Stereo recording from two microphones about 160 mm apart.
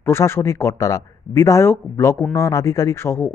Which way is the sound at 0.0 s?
15° left (ahead or behind).